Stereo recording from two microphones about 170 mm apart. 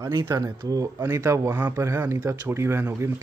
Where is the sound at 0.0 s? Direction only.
20° right (ahead or behind).